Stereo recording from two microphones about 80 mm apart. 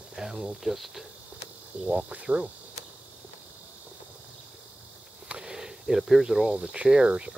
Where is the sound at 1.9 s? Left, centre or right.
Centre.